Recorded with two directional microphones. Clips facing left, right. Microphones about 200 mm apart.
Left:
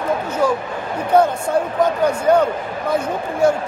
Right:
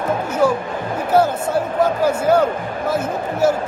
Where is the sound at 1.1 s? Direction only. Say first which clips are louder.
Left 1 dB; 5° right (ahead or behind).